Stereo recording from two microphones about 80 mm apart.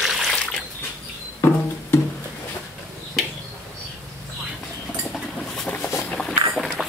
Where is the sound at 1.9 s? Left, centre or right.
Left.